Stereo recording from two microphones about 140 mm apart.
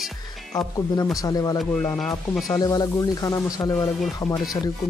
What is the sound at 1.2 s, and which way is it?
Speech, 25° left (ahead or behind).